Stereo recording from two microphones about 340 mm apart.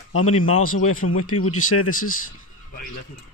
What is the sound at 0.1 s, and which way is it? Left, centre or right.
Speech, left.